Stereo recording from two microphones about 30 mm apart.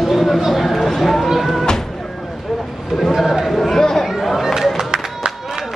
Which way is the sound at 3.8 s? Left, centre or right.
Centre.